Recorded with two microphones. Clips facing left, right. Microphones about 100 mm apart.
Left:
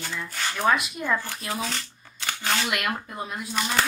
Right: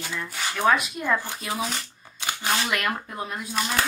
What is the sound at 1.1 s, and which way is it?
Speech, 15° right (ahead or behind).